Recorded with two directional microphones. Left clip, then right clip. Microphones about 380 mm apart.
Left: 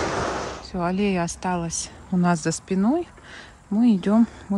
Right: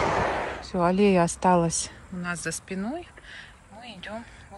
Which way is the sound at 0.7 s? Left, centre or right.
Centre.